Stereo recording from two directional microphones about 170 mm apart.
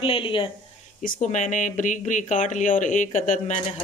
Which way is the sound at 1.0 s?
50° left (ahead or behind).